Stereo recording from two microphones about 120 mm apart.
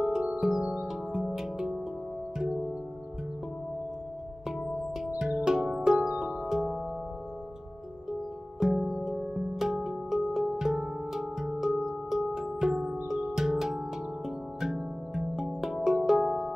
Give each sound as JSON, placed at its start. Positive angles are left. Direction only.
{"t": 0.0, "sound": "music", "side_deg": -5}
{"t": 5.0, "sound": "music", "side_deg": -10}
{"t": 8.5, "sound": "music", "side_deg": -5}